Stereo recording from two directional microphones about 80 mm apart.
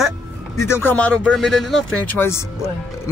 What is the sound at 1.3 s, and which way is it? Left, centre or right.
Speech, centre.